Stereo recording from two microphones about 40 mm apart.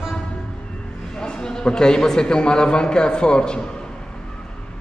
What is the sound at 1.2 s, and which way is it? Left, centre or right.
A man's voice, left.